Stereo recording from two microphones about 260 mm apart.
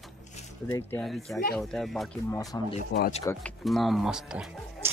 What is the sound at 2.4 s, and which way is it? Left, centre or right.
Speech, centre.